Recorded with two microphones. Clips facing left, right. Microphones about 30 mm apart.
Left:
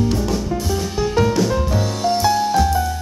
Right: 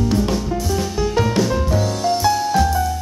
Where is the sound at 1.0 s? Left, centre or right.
Centre.